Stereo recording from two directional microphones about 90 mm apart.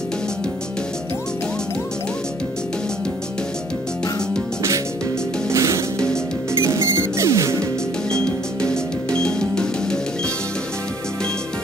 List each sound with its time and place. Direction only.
5.5 s music: 30° right (ahead or behind)
8.1 s music: 10° left (ahead or behind)